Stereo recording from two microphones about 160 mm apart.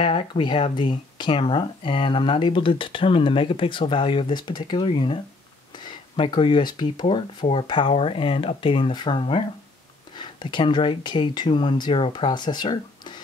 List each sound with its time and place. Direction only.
0.0 s speech: 30° left (ahead or behind)